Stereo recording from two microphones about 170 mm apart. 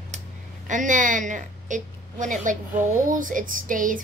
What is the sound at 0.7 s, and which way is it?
A woman's voice, 50° right (ahead or behind).